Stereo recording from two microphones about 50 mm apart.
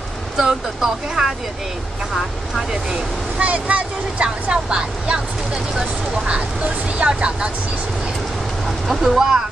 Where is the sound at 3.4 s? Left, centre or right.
Right.